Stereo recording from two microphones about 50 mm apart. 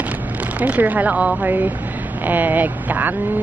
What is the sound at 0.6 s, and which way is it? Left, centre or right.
A woman's voice, right.